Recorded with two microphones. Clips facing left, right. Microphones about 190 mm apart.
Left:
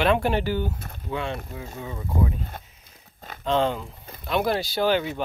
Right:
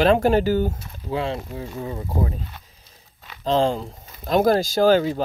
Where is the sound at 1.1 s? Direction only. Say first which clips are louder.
Right 4 dB; 30° right (ahead or behind).